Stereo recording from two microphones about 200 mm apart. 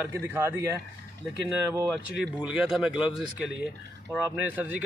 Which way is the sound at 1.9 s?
5° right (ahead or behind).